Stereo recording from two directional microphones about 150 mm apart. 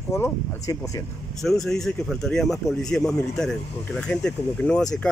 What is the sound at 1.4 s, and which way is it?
Speech, centre (ahead or behind).